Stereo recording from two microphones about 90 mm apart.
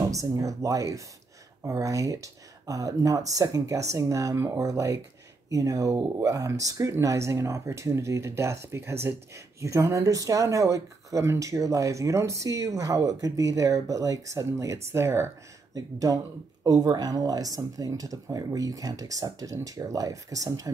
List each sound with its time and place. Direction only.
0.1 s speech: 40° right (ahead or behind)
15.7 s speech: 40° right (ahead or behind)